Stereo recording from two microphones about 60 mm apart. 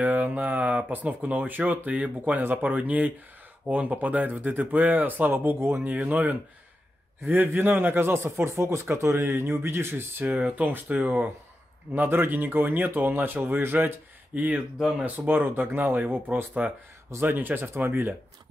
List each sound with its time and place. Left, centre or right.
0.0 s speech: right
5.9 s speech: right
17.2 s speech: right